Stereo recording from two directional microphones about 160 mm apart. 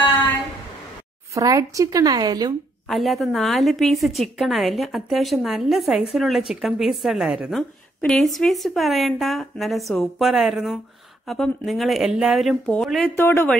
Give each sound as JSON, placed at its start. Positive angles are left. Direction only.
{"t": 1.3, "sound": "speech", "side_deg": -20}
{"t": 2.9, "sound": "a woman's voice", "side_deg": 0}
{"t": 13.1, "sound": "speech", "side_deg": 15}